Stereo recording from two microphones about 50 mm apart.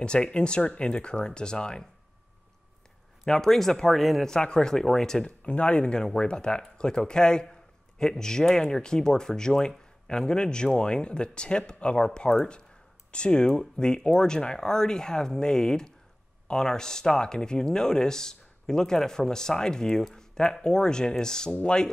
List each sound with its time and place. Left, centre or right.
0.0 s speech: centre
3.3 s speech: centre
4.3 s speech: centre
5.2 s speech: left